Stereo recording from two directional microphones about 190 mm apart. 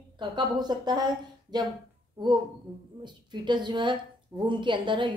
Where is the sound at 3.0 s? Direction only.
25° right (ahead or behind).